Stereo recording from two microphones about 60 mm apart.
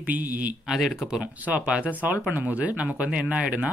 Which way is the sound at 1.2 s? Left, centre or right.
Right.